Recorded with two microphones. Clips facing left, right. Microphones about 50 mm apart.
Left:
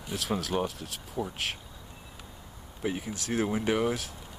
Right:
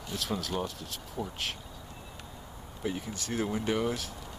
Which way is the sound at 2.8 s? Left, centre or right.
Left.